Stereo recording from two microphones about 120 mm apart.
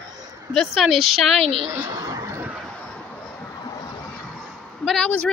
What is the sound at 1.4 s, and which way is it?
Speech, 50° right (ahead or behind).